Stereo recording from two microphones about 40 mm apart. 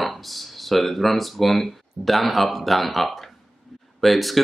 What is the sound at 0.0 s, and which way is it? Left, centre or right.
Speech, centre.